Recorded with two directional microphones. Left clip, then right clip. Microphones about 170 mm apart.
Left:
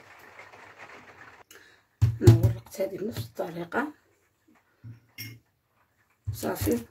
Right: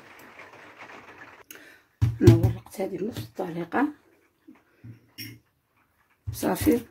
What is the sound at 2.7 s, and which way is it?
Speech, 15° right (ahead or behind).